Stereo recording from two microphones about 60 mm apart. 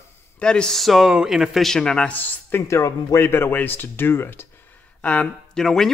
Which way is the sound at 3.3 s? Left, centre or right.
Left.